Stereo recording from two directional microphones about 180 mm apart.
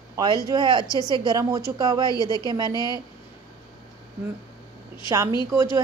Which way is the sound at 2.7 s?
20° left (ahead or behind).